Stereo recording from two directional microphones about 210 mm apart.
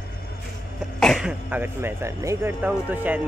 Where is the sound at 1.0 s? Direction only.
Centre (ahead or behind).